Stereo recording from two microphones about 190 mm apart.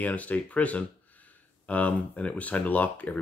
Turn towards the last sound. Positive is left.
turn(degrees=10)  # may be behind; listen again after turning